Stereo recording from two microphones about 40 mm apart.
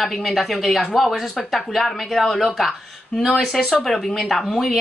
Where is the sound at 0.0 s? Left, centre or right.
Centre.